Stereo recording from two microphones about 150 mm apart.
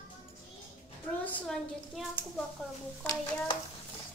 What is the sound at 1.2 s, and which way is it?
Speech, 5° left (ahead or behind).